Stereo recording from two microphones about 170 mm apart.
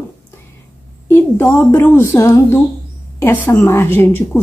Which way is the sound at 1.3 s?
15° left (ahead or behind).